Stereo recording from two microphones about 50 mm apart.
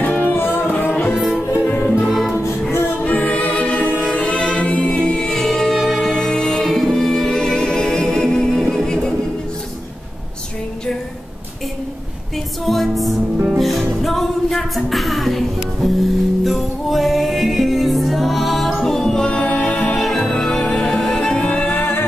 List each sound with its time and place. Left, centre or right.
0.0 s music: left
1.7 s music: left
2.0 s music: centre
3.0 s music: left; by 5.8 s centre
5.8 s music: centre
6.1 s music: centre
6.6 s music: centre
12.6 s music: centre; by 21.6 s left
21.6 s music: left